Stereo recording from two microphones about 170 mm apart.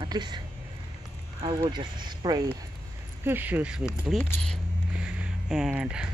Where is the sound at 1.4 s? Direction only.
30° right (ahead or behind).